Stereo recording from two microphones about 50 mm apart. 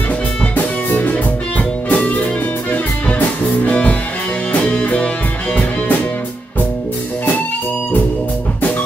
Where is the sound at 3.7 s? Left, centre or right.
Left.